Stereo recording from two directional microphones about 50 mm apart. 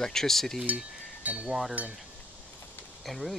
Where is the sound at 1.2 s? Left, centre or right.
Right.